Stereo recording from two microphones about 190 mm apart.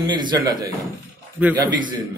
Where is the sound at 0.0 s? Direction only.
25° right (ahead or behind).